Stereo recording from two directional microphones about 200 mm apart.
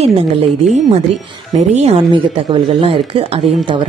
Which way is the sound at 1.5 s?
35° right (ahead or behind).